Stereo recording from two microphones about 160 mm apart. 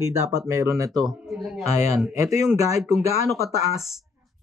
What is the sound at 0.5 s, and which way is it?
Speech, 20° right (ahead or behind).